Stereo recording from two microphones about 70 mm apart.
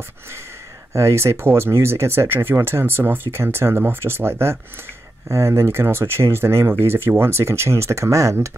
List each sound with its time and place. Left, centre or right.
0.9 s speech: right